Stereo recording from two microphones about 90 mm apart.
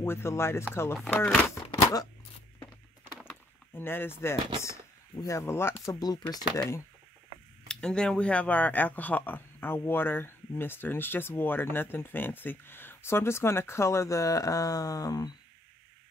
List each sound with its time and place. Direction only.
0.0 s speech: 25° left (ahead or behind)
1.5 s a sound: 40° left (ahead or behind)
3.3 s chop: 25° left (ahead or behind)
5.1 s speech: 35° left (ahead or behind)
5.9 s speech: 45° left (ahead or behind)
6.5 s speech: 35° left (ahead or behind)
7.6 s speech: 10° left (ahead or behind); by 15.3 s 45° left (ahead or behind)